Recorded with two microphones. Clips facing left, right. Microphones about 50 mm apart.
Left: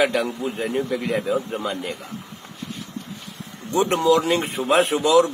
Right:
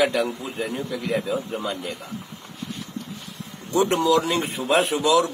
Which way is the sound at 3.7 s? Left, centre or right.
Left.